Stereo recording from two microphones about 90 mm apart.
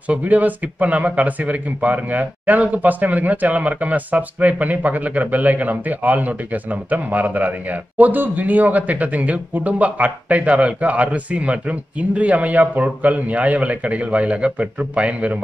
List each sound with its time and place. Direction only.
0.1 s speech: 15° right (ahead or behind)